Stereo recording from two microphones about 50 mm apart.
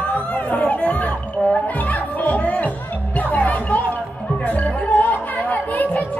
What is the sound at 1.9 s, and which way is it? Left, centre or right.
Music, left.